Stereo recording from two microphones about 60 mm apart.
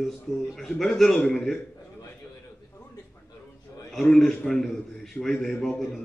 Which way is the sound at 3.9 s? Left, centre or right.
Centre.